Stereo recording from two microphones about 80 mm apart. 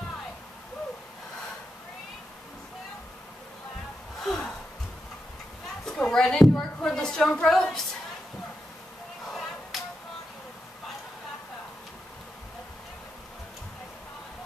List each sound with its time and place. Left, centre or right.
4.2 s gasp: centre
5.9 s speech: centre
9.3 s a sound: centre